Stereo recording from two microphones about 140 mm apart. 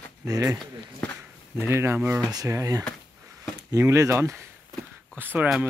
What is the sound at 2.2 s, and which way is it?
Speech, 25° right (ahead or behind).